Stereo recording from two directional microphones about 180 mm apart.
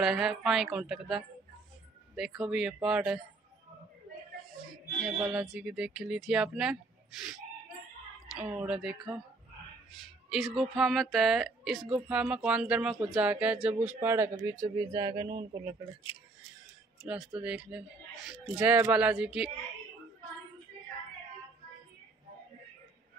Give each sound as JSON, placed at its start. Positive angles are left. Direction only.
{"t": 0.0, "sound": "a woman's voice", "side_deg": -5}
{"t": 5.0, "sound": "a woman's voice", "side_deg": -5}
{"t": 17.0, "sound": "speech", "side_deg": -5}